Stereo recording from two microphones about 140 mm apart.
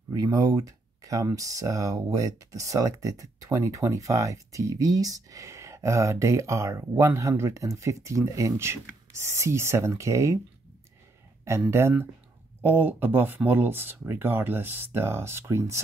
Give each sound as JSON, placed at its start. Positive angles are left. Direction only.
{"t": 0.1, "sound": "speech", "side_deg": -25}
{"t": 11.4, "sound": "speech", "side_deg": -20}